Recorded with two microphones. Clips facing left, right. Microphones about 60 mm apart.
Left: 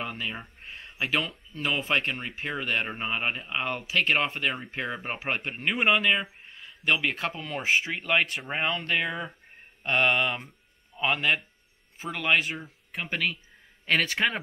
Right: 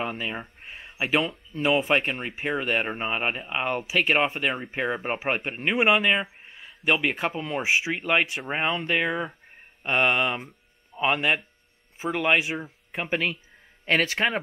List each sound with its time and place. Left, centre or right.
0.0 s speech: centre